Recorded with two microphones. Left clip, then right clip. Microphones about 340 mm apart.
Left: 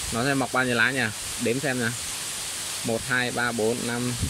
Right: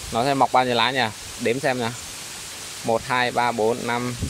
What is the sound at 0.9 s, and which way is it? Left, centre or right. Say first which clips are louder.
Speech: right 3 dB; right.